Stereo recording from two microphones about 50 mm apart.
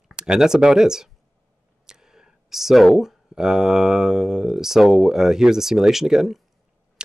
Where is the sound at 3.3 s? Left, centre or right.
Centre.